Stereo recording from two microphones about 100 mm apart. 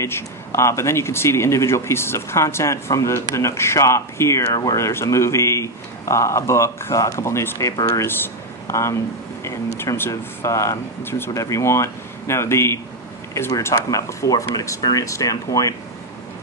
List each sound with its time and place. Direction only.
0.0 s speech: 25° left (ahead or behind)
8.1 s a sound: 25° left (ahead or behind)
9.4 s speech: 25° left (ahead or behind)